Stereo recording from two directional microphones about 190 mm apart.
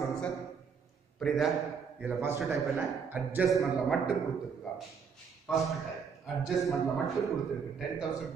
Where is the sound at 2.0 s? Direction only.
10° right (ahead or behind).